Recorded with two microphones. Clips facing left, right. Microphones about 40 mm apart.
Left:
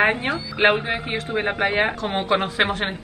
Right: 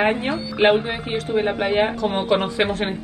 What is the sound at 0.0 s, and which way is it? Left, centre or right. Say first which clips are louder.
A woman's voice: even; left.